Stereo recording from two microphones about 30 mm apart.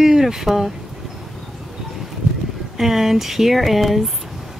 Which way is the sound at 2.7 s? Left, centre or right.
Centre.